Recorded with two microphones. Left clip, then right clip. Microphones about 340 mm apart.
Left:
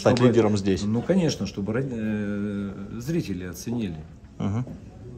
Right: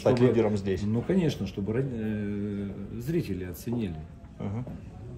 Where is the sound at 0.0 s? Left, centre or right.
Left.